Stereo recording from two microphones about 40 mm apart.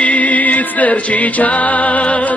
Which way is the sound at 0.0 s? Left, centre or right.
Left.